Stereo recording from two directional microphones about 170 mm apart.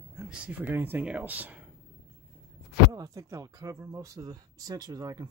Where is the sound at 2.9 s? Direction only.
20° right (ahead or behind).